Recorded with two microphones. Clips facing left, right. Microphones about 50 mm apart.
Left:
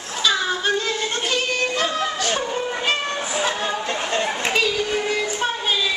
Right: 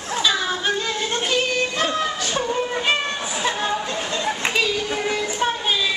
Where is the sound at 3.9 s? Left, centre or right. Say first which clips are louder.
Left 3 dB; left.